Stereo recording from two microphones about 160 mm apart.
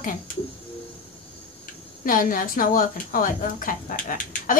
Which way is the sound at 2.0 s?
60° left (ahead or behind).